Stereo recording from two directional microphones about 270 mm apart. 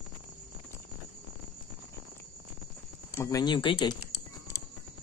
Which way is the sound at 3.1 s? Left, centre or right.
Centre.